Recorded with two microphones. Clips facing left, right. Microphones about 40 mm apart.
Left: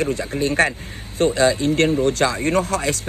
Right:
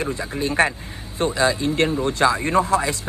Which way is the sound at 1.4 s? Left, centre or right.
Centre.